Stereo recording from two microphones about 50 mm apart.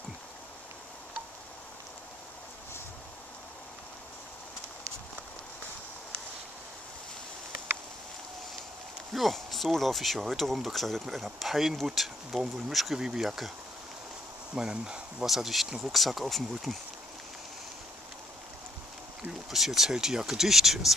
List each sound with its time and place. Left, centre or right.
9.1 s speech: centre
14.5 s speech: centre
15.2 s speech: centre
19.5 s speech: centre